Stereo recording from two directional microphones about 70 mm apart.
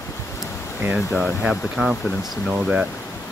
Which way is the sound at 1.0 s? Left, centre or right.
Centre.